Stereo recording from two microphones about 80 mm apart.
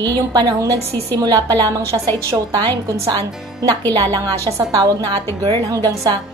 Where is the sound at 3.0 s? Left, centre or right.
Right.